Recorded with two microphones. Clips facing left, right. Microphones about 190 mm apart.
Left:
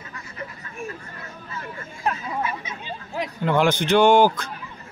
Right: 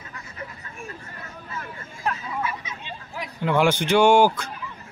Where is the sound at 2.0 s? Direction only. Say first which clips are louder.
Left 2 dB; 25° left (ahead or behind).